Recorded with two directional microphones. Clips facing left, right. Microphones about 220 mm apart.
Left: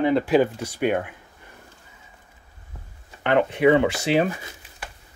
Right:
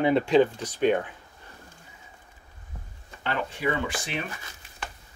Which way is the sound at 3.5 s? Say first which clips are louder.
Left 12 dB; 65° left (ahead or behind).